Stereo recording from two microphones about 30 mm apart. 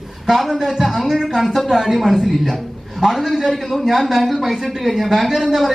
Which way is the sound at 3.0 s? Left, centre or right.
Centre.